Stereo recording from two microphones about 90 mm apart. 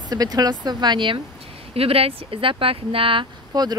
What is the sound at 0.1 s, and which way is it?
Speech, 45° right (ahead or behind).